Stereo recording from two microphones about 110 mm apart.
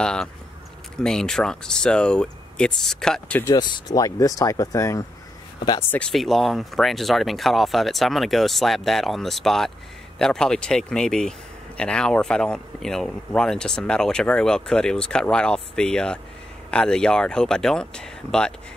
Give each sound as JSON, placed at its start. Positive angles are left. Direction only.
{"t": 0.0, "sound": "speech", "side_deg": 5}
{"t": 3.4, "sound": "speech", "side_deg": 40}
{"t": 5.8, "sound": "speech", "side_deg": 20}
{"t": 6.0, "sound": "speech", "side_deg": 0}